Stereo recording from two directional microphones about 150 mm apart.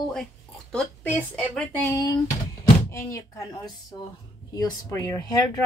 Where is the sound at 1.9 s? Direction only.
25° left (ahead or behind).